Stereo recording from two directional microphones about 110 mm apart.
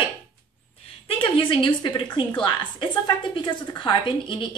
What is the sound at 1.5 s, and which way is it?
A woman's voice, 50° left (ahead or behind).